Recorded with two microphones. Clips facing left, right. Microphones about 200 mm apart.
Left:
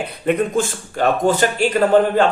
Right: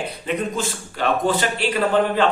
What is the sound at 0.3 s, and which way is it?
Speech, 50° left (ahead or behind).